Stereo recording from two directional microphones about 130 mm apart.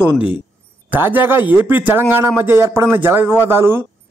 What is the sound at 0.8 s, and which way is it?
A man's voice, 15° right (ahead or behind).